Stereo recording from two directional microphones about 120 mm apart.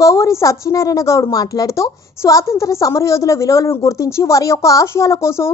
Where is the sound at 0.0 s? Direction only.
25° left (ahead or behind).